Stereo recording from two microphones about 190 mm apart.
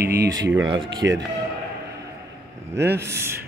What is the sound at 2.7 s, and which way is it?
Speech, 15° right (ahead or behind).